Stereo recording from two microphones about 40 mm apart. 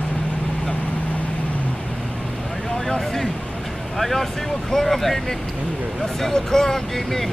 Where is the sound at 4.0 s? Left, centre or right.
Centre.